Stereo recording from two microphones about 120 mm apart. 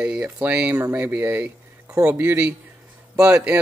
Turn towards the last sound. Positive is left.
turn(degrees=-15)  # may be behind; listen again after turning